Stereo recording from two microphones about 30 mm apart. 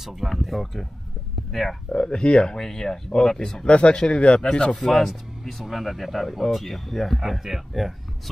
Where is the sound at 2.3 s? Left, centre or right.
Left.